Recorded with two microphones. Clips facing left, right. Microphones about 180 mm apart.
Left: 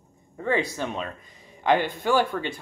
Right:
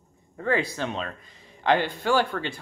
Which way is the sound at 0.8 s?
10° left (ahead or behind).